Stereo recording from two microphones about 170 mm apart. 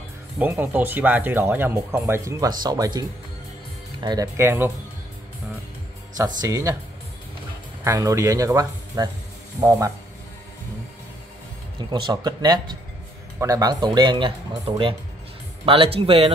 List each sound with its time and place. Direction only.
0.4 s speech: 10° right (ahead or behind)
6.1 s speech: 20° right (ahead or behind)
7.8 s speech: 20° right (ahead or behind)
11.9 s speech: 25° right (ahead or behind)